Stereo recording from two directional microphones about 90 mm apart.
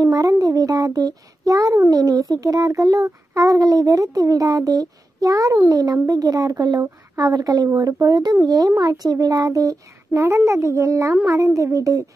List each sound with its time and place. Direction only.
0.0 s a child's voice: 40° right (ahead or behind)